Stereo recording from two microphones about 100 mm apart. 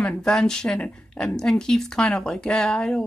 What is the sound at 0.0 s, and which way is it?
Speech, 5° left (ahead or behind).